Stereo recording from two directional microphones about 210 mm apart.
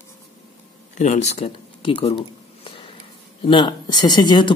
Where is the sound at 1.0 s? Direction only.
35° left (ahead or behind).